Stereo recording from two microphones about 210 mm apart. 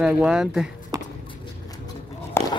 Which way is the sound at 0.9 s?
20° right (ahead or behind).